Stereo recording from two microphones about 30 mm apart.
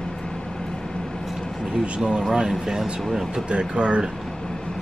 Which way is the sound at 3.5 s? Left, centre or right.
Right.